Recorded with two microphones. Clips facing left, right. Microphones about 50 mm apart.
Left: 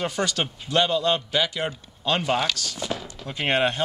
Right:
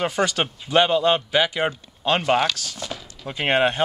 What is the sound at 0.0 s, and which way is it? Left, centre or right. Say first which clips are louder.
A man's voice: right 4 dB; centre.